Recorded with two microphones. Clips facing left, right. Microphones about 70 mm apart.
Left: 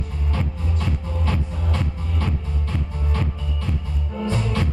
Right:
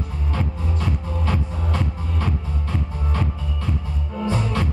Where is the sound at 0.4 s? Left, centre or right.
Centre.